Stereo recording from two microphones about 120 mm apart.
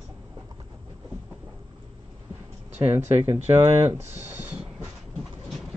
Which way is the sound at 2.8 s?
15° right (ahead or behind).